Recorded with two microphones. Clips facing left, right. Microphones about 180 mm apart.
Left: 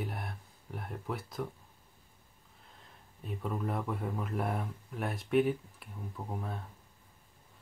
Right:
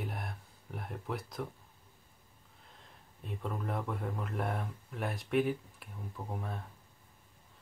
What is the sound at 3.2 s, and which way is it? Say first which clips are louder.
Speech: left 3 dB; 5° left (ahead or behind).